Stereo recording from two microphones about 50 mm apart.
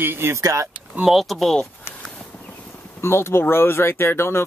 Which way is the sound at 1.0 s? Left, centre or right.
Centre.